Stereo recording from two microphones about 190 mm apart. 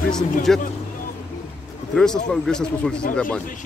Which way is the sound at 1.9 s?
5° left (ahead or behind).